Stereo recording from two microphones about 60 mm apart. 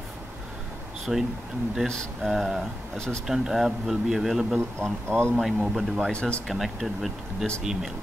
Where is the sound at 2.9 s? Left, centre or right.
Centre.